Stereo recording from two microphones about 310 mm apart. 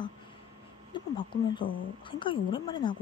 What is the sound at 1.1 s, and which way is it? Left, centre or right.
A woman's voice, centre.